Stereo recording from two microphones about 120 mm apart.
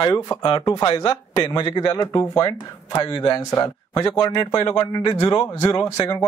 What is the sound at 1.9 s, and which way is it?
A man's voice, 25° left (ahead or behind).